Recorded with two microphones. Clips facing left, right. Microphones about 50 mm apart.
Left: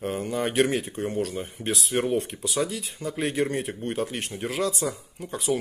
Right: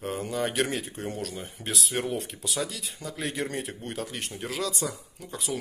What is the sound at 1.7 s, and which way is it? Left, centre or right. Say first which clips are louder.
Speech: left 5 dB; centre.